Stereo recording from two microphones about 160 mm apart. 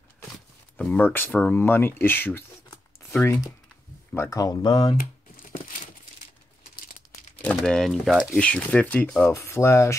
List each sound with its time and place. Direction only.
0.7 s speech: 10° left (ahead or behind); by 4.9 s 25° left (ahead or behind)
7.4 s speech: 5° left (ahead or behind)